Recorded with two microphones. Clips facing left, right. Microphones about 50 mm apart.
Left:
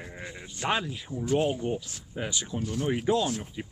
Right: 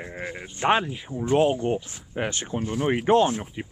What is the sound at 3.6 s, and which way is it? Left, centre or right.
Speech, right.